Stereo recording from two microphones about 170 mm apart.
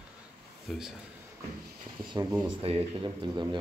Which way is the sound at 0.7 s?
Centre (ahead or behind).